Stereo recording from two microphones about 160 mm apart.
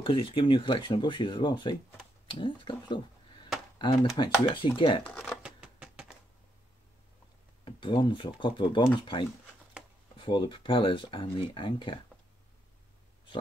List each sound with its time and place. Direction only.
0.0 s speech: 35° left (ahead or behind)
5.0 s speech: 10° left (ahead or behind)
5.4 s a sound: 5° right (ahead or behind)
7.6 s speech: 30° left (ahead or behind)